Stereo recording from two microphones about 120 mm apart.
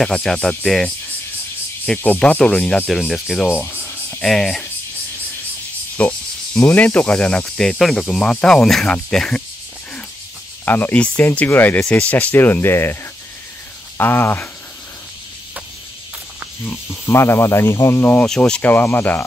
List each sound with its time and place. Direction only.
0.0 s speech: 5° left (ahead or behind)
2.0 s speech: 10° left (ahead or behind)
3.6 s a sound: 15° left (ahead or behind)
4.2 s speech: centre (ahead or behind)
5.9 s speech: 10° left (ahead or behind)
10.6 s speech: 15° left (ahead or behind)
13.9 s speech: 20° left (ahead or behind)
16.6 s speech: 20° left (ahead or behind)
18.2 s speech: 5° left (ahead or behind)